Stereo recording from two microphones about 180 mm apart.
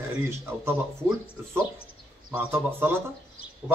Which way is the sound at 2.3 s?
10° right (ahead or behind).